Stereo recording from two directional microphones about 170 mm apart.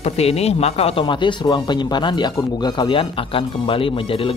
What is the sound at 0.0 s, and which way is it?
Speech, 40° left (ahead or behind).